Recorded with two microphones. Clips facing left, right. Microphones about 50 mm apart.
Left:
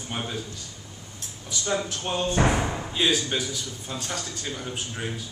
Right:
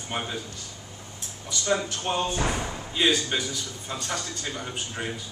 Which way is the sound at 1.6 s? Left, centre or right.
Centre.